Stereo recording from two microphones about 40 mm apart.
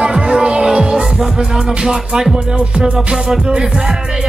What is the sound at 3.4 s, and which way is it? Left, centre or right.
Music, centre.